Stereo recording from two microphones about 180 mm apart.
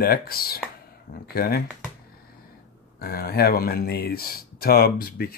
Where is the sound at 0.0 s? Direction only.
60° left (ahead or behind).